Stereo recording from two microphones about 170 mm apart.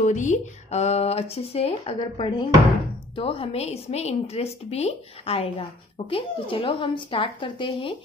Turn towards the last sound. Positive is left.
turn(degrees=30)  # may be behind; listen again after turning